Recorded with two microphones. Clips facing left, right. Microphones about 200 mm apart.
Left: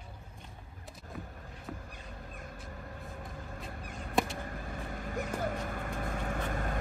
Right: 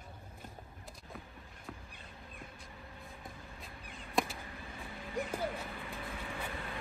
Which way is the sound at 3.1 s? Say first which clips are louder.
Left 6 dB; 55° left (ahead or behind).